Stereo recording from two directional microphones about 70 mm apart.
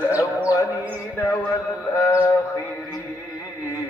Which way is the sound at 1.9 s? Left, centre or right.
Left.